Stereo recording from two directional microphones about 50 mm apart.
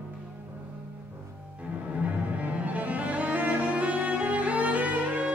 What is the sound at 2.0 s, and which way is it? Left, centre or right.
Cello, right.